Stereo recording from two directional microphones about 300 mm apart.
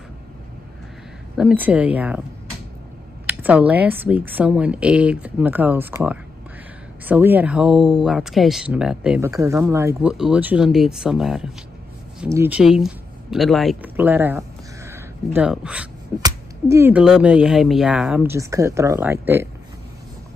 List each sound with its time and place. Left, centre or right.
1.3 s speech: centre
3.3 s speech: centre